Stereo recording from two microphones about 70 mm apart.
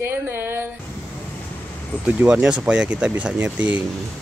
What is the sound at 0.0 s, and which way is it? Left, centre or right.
Speech, right.